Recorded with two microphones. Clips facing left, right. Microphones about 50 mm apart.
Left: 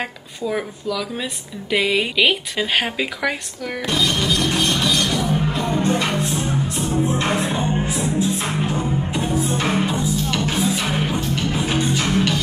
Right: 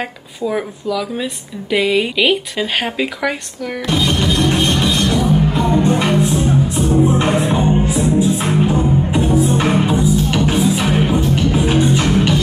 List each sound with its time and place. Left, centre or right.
0.5 s speech: centre
3.9 s music: right